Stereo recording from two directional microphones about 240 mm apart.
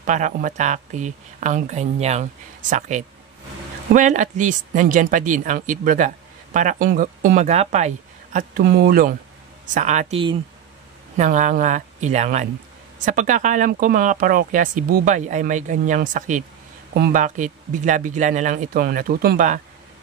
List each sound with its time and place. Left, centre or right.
0.0 s speech: right